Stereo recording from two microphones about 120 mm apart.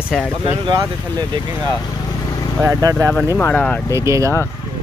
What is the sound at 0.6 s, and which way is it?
Speech, 35° right (ahead or behind).